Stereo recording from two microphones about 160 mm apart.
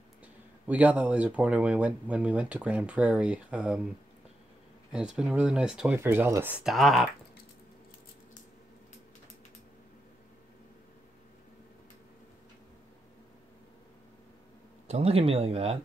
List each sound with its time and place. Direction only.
0.7 s speech: 10° right (ahead or behind)
4.9 s speech: 5° right (ahead or behind)
14.9 s speech: 40° right (ahead or behind)